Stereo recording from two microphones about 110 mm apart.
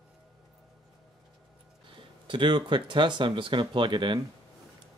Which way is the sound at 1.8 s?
50° right (ahead or behind).